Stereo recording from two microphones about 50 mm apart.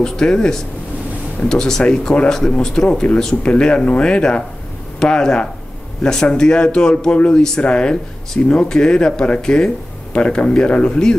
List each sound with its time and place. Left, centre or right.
0.0 s speech: centre